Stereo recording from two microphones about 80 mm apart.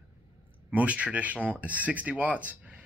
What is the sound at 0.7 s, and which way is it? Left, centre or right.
A man's voice, centre.